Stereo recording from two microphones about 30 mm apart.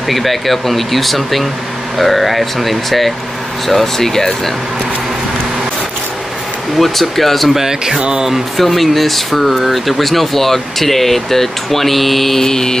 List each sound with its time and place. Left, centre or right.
0.1 s speech: centre
6.8 s speech: centre
7.4 s speech: centre
8.5 s speech: centre
12.4 s mantra: centre